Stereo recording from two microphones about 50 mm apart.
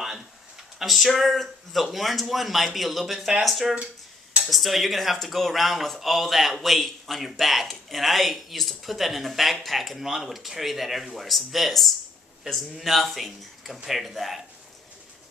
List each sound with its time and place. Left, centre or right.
0.7 s speech: centre
3.7 s a sound: right
4.5 s speech: centre